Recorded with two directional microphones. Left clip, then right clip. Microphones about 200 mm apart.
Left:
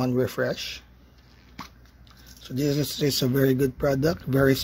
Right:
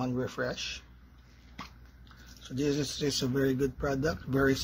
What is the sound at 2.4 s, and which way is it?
Speech, 45° left (ahead or behind).